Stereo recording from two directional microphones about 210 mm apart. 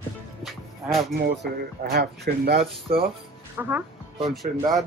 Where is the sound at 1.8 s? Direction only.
50° right (ahead or behind).